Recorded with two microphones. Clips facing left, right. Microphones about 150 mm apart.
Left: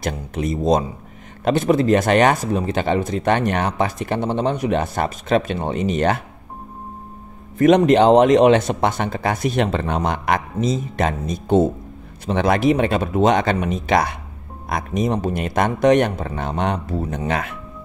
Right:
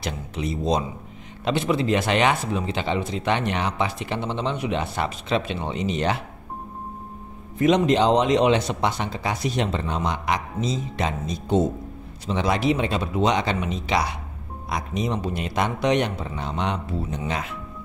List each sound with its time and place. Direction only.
0.0 s speech: 50° left (ahead or behind)
7.5 s speech: 55° left (ahead or behind)
17.3 s speech: 55° left (ahead or behind)